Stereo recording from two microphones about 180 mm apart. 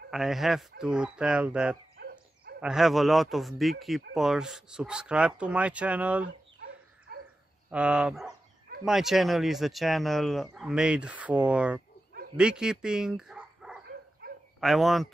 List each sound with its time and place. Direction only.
0.1 s speech: centre (ahead or behind)
2.0 s dog: 55° right (ahead or behind)
2.6 s speech: centre (ahead or behind)
7.1 s dog: 60° right (ahead or behind)
7.7 s speech: 5° right (ahead or behind)